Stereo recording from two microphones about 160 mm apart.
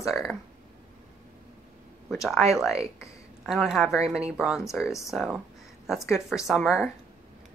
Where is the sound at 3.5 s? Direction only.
Centre (ahead or behind).